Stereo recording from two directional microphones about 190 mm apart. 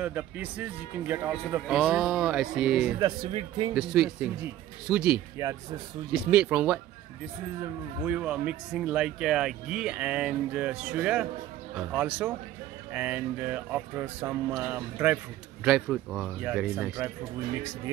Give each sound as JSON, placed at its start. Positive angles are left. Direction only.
{"t": 0.0, "sound": "speech", "side_deg": -10}
{"t": 3.0, "sound": "speech", "side_deg": -20}
{"t": 3.7, "sound": "speech", "side_deg": -5}
{"t": 8.0, "sound": "speech", "side_deg": -5}